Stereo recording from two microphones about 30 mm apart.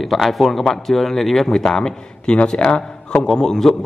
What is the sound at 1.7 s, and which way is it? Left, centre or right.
A man's voice, left.